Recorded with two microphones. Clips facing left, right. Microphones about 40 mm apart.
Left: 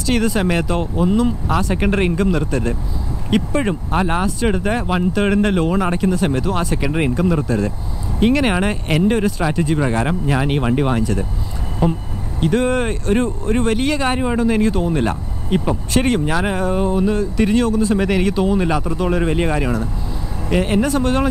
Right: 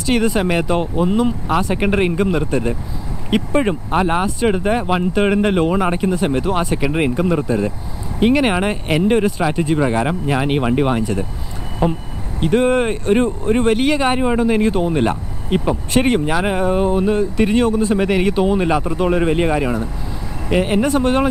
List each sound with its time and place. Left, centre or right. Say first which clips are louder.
0.0 s speech: right 1 dB; centre
12.4 s speech: right 2 dB; centre